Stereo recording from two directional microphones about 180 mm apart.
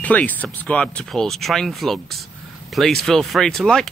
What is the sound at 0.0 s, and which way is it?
Speech, 10° left (ahead or behind).